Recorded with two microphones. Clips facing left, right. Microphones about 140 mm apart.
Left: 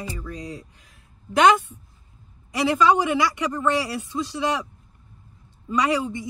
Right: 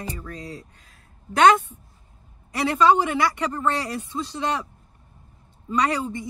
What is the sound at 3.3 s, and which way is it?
Speech, 10° left (ahead or behind).